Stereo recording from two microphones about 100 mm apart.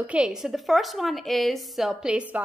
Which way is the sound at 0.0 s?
10° right (ahead or behind).